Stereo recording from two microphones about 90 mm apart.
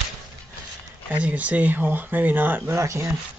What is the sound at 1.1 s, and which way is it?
Speech, 15° right (ahead or behind).